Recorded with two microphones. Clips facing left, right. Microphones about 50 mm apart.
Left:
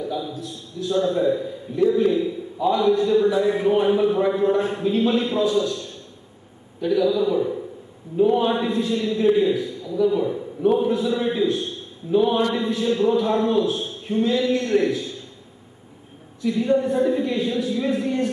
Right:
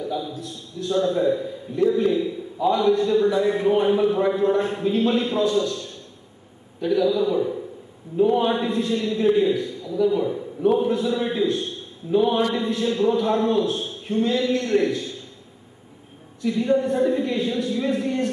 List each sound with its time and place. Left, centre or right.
0.0 s a sound: centre
0.8 s a man's voice: centre
16.4 s a man's voice: centre